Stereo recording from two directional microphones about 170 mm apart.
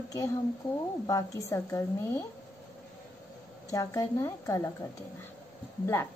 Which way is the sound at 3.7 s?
20° left (ahead or behind).